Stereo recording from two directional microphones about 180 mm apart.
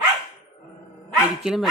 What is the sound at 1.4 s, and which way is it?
Speech, centre (ahead or behind).